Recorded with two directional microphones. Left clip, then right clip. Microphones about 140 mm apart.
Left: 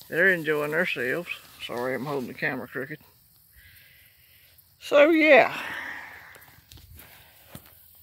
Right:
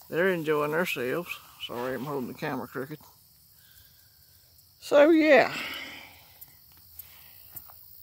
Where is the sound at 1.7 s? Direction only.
40° left (ahead or behind).